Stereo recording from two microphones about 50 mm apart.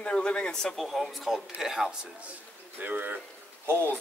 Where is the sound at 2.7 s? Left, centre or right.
Right.